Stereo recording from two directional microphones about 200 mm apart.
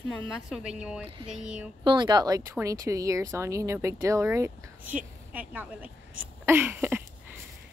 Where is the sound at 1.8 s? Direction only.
20° right (ahead or behind).